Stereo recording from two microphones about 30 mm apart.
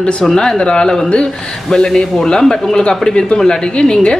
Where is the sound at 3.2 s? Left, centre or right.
Left.